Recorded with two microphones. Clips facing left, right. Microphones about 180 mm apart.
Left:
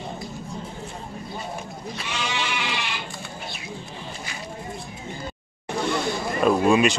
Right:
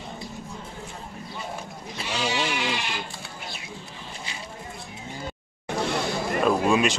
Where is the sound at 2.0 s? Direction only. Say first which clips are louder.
Right 3 dB; 35° right (ahead or behind).